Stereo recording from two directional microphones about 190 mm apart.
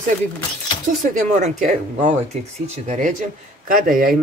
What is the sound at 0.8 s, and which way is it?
Speech, 40° right (ahead or behind).